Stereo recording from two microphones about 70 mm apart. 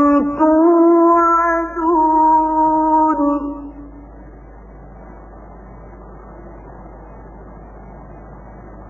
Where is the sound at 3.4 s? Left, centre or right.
Left.